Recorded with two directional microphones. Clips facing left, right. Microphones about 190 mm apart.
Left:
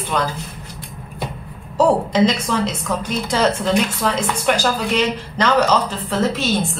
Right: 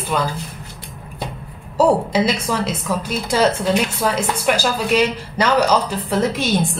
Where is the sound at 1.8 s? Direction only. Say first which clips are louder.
Left 1 dB; 10° right (ahead or behind).